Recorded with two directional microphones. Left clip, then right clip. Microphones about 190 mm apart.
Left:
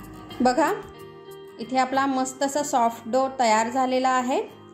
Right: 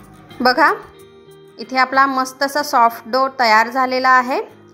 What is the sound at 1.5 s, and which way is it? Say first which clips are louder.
A woman's voice: right 9 dB; 10° right (ahead or behind).